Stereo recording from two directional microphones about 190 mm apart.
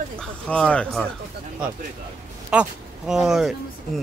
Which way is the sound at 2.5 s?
5° right (ahead or behind).